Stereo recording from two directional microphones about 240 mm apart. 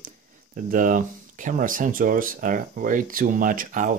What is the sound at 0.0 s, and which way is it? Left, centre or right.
Speech, right.